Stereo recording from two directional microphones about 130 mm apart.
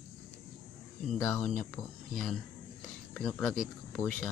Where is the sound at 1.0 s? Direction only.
5° left (ahead or behind).